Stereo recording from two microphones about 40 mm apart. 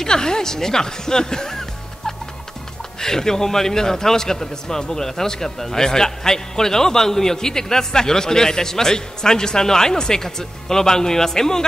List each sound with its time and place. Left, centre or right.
0.0 s a man's voice: centre